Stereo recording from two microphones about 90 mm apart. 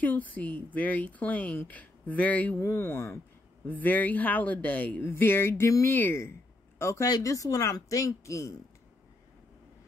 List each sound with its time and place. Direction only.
0.0 s speech: 20° left (ahead or behind)
2.6 s a woman's voice: 30° left (ahead or behind)